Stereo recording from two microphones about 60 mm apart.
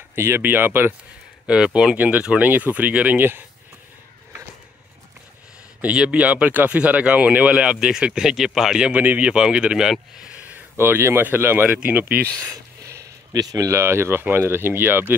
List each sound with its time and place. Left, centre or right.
0.1 s speech: right
1.5 s speech: centre
2.0 s speech: right
3.2 s speech: right
5.9 s speech: right
8.9 s speech: right
9.3 s speech: centre
10.8 s speech: right
12.4 s a sound: right
13.3 s speech: right
13.7 s speech: right